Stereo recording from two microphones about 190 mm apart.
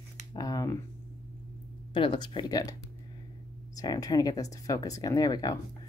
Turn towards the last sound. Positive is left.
turn(degrees=20)  # may be behind; listen again after turning